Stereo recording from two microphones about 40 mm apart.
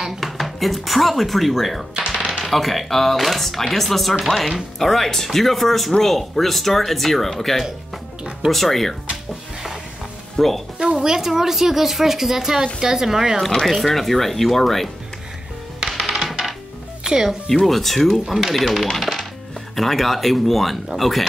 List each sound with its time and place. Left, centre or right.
0.2 s speech: centre
2.0 s typewriter: centre
2.4 s speech: centre
9.1 s music: centre
10.3 s speech: centre
10.8 s a woman's voice: centre
13.7 s speech: centre
15.8 s music: centre
17.0 s speech: centre
17.6 s speech: centre